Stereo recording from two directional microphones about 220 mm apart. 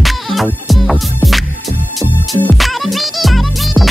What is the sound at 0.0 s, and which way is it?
Music, centre (ahead or behind).